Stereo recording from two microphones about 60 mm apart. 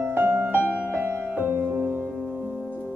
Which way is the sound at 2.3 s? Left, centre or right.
Right.